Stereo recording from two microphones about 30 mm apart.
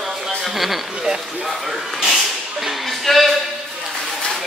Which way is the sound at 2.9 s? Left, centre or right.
Centre.